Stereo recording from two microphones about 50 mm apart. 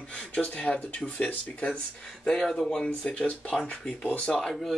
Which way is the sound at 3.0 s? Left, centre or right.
Left.